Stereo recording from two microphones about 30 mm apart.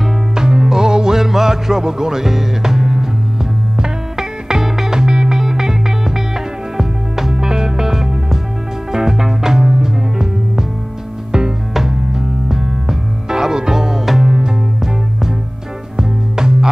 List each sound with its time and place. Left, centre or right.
0.3 s music: right
11.7 s music: centre